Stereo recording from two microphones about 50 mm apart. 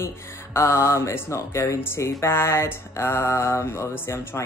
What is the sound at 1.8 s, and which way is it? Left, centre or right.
Mantra, left.